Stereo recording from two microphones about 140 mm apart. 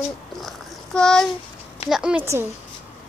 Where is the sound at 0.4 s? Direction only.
5° left (ahead or behind).